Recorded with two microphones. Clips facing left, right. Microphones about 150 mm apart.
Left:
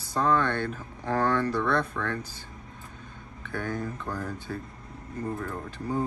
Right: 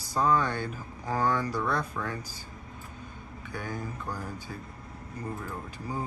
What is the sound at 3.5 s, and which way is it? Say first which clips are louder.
Speech: left 5 dB; 55° left (ahead or behind).